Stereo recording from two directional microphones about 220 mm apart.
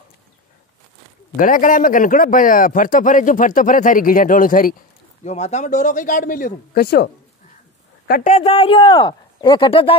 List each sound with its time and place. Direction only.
1.3 s a man's voice: 35° left (ahead or behind)
8.1 s speech: 35° left (ahead or behind)